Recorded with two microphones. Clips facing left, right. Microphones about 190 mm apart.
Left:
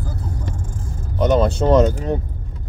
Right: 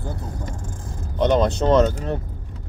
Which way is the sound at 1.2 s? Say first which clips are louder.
Left 2 dB; 10° left (ahead or behind).